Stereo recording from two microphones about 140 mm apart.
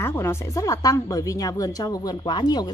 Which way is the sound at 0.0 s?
15° left (ahead or behind).